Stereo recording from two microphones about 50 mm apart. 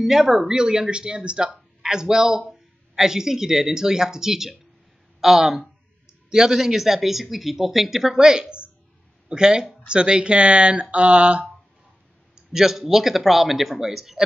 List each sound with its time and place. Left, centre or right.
0.0 s speech: centre; by 11.4 s right
12.4 s speech: centre